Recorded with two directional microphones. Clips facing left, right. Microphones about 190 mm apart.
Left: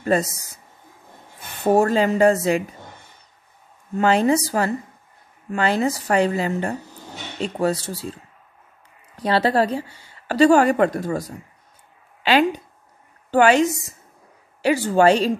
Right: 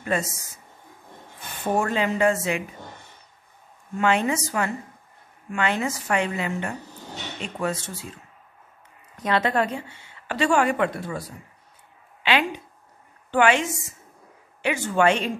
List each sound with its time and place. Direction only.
0.0 s speech: 35° left (ahead or behind)
1.6 s a woman's voice: 35° left (ahead or behind)
3.9 s a woman's voice: 35° left (ahead or behind)